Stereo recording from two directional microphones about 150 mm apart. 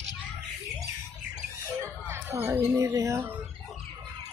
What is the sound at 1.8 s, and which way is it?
Speech, 15° right (ahead or behind).